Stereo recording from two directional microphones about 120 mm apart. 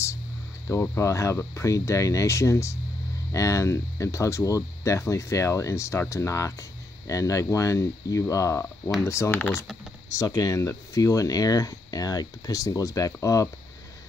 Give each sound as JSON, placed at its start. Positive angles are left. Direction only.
{"t": 0.7, "sound": "speech", "side_deg": 25}